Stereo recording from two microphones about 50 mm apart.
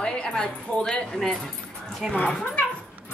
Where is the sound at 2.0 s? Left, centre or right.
Centre.